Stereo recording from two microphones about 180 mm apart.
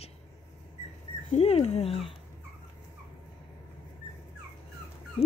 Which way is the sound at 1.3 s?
35° left (ahead or behind).